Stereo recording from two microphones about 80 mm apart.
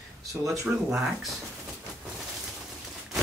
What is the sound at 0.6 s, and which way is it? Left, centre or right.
Speech, centre.